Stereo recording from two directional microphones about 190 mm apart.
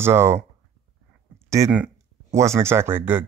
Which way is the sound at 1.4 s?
15° right (ahead or behind).